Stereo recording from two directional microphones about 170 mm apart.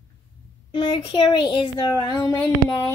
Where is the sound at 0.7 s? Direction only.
30° left (ahead or behind).